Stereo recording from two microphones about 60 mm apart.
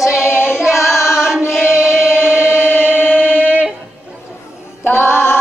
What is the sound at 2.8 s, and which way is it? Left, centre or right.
Singing, left.